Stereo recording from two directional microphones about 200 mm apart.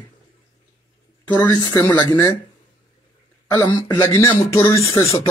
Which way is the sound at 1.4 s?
20° left (ahead or behind).